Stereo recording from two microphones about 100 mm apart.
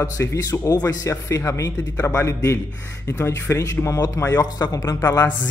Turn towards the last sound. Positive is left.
turn(degrees=30)  # may be behind; listen again after turning